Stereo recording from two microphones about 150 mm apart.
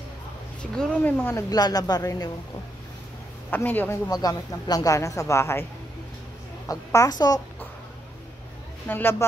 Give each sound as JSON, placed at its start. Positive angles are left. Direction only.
{"t": 0.6, "sound": "speech", "side_deg": 10}
{"t": 1.5, "sound": "speech", "side_deg": 25}
{"t": 3.4, "sound": "speech", "side_deg": 10}
{"t": 4.1, "sound": "speech", "side_deg": 25}
{"t": 6.7, "sound": "speech", "side_deg": 20}
{"t": 8.8, "sound": "speech", "side_deg": 15}